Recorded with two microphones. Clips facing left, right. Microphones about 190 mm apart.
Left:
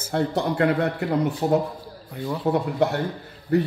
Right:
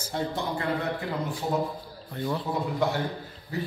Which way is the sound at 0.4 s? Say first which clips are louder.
Left 11 dB; 70° left (ahead or behind).